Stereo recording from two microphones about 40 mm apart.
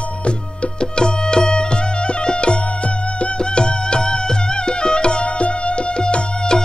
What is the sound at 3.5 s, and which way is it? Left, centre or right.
Music, left.